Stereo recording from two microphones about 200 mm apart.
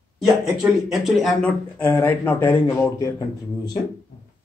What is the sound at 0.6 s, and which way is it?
Speech, centre (ahead or behind).